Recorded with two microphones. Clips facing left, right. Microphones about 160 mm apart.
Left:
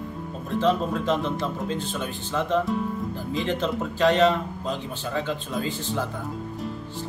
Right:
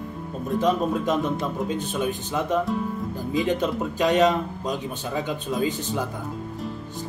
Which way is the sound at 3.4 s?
15° right (ahead or behind).